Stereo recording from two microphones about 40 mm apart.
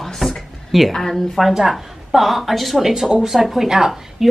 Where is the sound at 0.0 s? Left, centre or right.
Centre.